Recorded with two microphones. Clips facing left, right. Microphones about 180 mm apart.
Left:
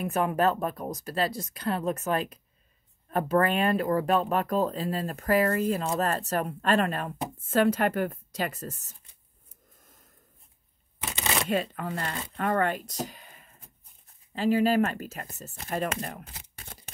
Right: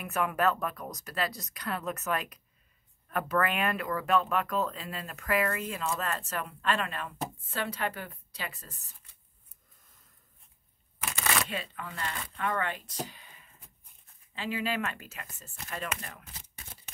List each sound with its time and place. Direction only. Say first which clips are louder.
0.0 s speech: left 4 dB; 30° left (ahead or behind); by 8.9 s 45° left (ahead or behind)
11.0 s a sound: left 1 dB; 25° left (ahead or behind)
11.4 s speech: left 10 dB; 45° left (ahead or behind)